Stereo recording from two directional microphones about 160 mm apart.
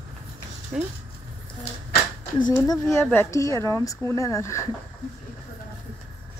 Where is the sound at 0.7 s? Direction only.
5° right (ahead or behind).